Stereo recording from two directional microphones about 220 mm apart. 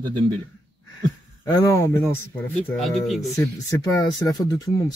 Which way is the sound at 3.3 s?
15° left (ahead or behind).